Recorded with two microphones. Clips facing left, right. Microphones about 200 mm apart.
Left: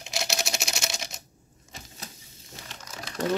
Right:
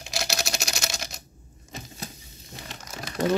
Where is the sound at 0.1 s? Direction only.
20° left (ahead or behind).